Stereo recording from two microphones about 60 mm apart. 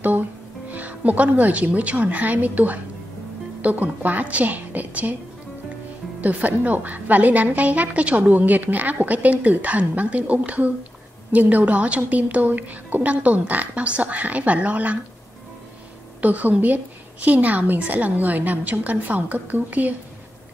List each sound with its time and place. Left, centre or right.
0.0 s a woman's voice: right
6.2 s a woman's voice: right
16.2 s a woman's voice: right